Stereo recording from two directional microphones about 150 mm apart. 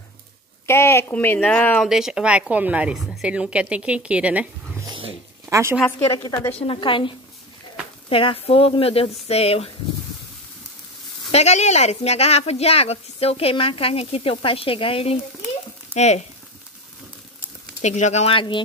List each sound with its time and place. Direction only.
0.7 s speech: 15° left (ahead or behind)
1.9 s speech: 5° right (ahead or behind)
4.8 s a sound: 35° right (ahead or behind)
5.5 s a woman's voice: 20° right (ahead or behind)
5.9 s a woman's voice: 20° left (ahead or behind)
6.6 s speech: 35° left (ahead or behind)
11.3 s speech: 45° left (ahead or behind)
15.9 s speech: 50° left (ahead or behind)
17.8 s speech: 50° left (ahead or behind); by 18.6 s 35° left (ahead or behind)